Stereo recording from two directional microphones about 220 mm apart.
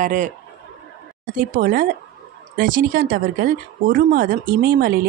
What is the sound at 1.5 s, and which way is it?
Speech, 40° right (ahead or behind).